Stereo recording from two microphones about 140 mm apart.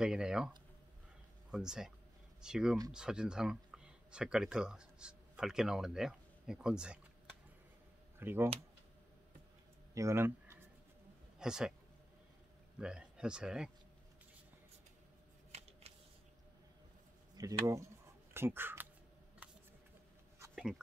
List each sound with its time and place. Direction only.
0.0 s speech: 5° right (ahead or behind)
1.5 s speech: 5° right (ahead or behind)
8.2 s speech: 15° right (ahead or behind)
9.9 s a sound: 20° right (ahead or behind)
11.3 s a man's voice: 5° right (ahead or behind)
12.7 s speech: 5° right (ahead or behind)
17.4 s speech: 25° right (ahead or behind)
19.4 s camera: 10° right (ahead or behind)
20.5 s a sound: 5° right (ahead or behind)